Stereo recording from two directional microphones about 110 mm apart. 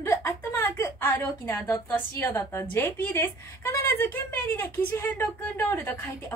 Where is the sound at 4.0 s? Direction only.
15° left (ahead or behind).